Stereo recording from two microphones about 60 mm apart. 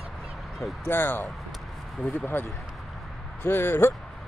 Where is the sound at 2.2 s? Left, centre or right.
Left.